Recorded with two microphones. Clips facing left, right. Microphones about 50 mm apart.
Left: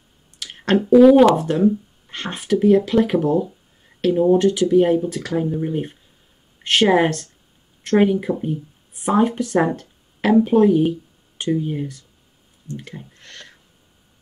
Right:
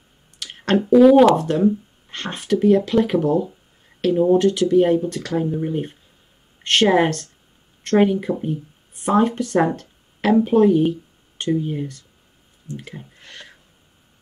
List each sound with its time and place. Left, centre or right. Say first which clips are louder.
0.4 s speech: left 1 dB; centre